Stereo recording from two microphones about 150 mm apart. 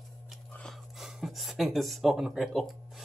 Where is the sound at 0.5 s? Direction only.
10° left (ahead or behind).